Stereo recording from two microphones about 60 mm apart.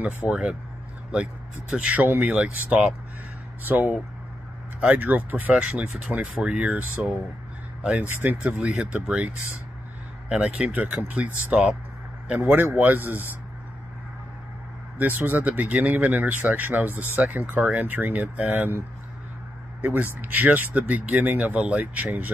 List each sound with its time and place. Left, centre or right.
0.3 s speech: centre
3.6 s speech: right
8.1 s speech: right
8.4 s speech: centre
10.3 s speech: centre; by 13.3 s right
15.0 s speech: right
19.8 s speech: right